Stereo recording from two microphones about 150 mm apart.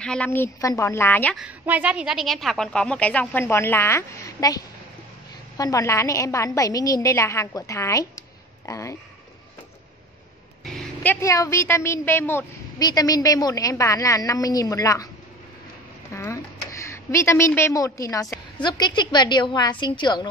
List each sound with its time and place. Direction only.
0.0 s a woman's voice: 5° left (ahead or behind)
1.3 s a woman's voice: 5° right (ahead or behind); by 4.6 s 20° left (ahead or behind)
5.6 s a woman's voice: 20° left (ahead or behind)
10.6 s a sound: 10° left (ahead or behind)
11.1 s a woman's voice: 20° left (ahead or behind)
12.7 s a woman's voice: 25° left (ahead or behind)
16.1 s a sound: 20° left (ahead or behind)
17.5 s a woman's voice: 15° left (ahead or behind)